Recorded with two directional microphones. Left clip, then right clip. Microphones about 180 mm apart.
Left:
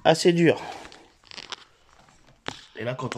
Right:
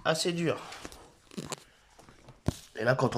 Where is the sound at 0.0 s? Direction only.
50° left (ahead or behind).